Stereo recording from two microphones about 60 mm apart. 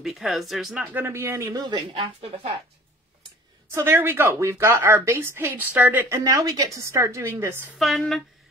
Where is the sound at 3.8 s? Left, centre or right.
Right.